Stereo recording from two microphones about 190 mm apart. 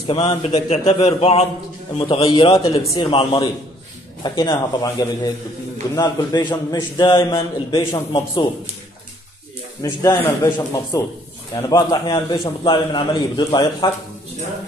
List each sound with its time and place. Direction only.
0.0 s a man's voice: 30° left (ahead or behind)
2.8 s a man's voice: 15° left (ahead or behind)
3.1 s a man's voice: 25° left (ahead or behind)
9.8 s a man's voice: 15° left (ahead or behind)